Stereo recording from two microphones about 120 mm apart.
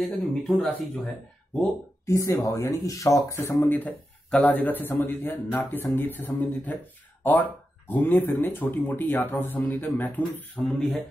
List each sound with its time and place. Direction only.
0.0 s speech: 5° left (ahead or behind)
2.0 s speech: 25° left (ahead or behind)